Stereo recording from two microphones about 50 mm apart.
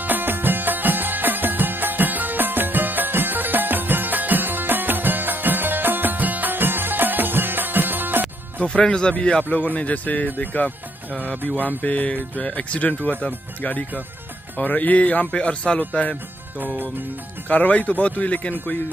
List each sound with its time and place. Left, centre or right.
0.0 s music: right
8.6 s speech: centre
9.4 s speech: left
16.5 s speech: right
17.5 s speech: left